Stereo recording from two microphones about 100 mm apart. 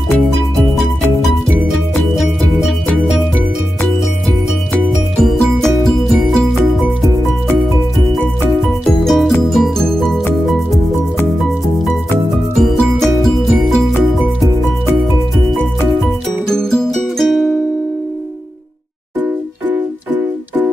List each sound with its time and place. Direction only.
2.1 s music: 5° right (ahead or behind)
5.1 s music: centre (ahead or behind)
9.0 s music: centre (ahead or behind)
12.5 s music: 5° left (ahead or behind)
16.4 s music: 5° left (ahead or behind)
19.7 s music: 15° right (ahead or behind)